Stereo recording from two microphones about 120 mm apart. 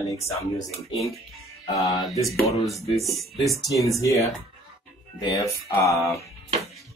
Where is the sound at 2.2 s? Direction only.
Centre (ahead or behind).